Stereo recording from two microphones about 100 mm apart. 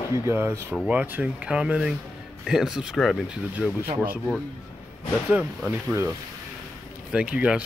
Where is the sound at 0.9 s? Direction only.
15° right (ahead or behind).